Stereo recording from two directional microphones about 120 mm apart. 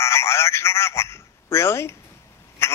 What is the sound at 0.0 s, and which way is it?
A man's voice, 20° left (ahead or behind).